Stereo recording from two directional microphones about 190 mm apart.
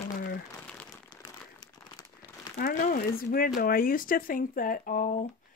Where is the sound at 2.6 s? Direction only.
50° left (ahead or behind).